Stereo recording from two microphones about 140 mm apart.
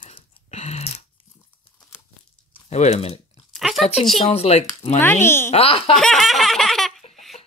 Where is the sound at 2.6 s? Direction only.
55° left (ahead or behind).